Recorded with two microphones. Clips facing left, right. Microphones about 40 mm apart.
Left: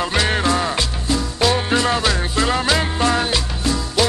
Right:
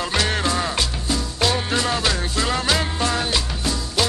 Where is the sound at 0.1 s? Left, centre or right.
Centre.